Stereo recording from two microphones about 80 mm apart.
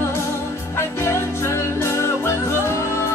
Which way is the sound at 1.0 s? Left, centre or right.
Left.